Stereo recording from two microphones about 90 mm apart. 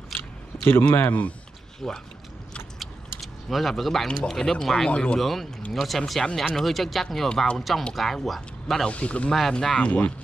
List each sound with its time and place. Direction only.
0.8 s speech: 20° left (ahead or behind)
1.8 s speech: 10° left (ahead or behind)
2.8 s keys jangling: centre (ahead or behind)
4.2 s speech: 5° left (ahead or behind)